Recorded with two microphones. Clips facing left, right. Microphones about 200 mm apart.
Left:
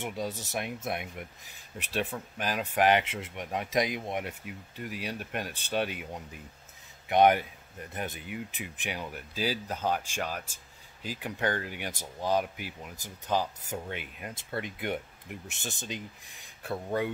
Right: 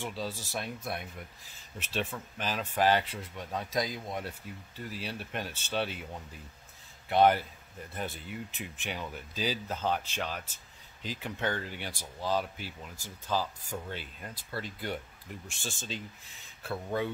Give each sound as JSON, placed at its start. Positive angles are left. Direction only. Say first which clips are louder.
{"t": 0.0, "sound": "speech", "louder": "left 2 dB", "side_deg": 20}
{"t": 1.8, "sound": "speech", "louder": "left 2 dB", "side_deg": 15}
{"t": 15.4, "sound": "speech", "louder": "left 1 dB", "side_deg": 20}